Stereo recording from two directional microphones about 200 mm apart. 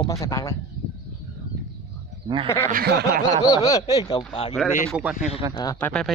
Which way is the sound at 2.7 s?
50° right (ahead or behind).